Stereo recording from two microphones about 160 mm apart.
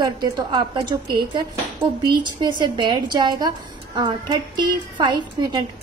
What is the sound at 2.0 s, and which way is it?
A woman's voice, 30° right (ahead or behind).